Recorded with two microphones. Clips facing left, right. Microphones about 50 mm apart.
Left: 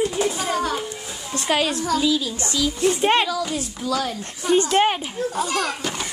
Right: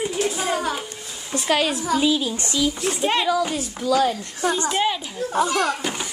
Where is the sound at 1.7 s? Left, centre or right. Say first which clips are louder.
Even; centre.